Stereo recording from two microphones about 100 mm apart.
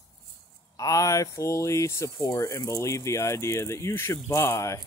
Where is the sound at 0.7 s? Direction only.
35° left (ahead or behind).